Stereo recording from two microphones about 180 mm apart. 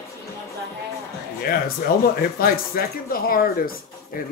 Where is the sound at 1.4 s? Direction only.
55° left (ahead or behind).